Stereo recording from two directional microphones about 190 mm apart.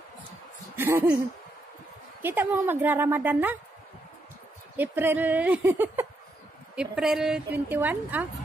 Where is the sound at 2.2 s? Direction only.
10° right (ahead or behind).